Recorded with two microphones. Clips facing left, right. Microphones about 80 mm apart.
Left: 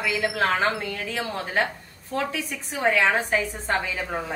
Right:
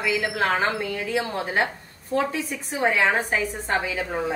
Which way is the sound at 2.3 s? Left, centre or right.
Right.